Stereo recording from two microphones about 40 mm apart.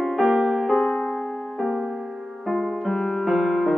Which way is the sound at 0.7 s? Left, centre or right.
Centre.